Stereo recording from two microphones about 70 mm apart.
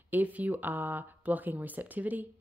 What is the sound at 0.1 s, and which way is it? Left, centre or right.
Speech, right.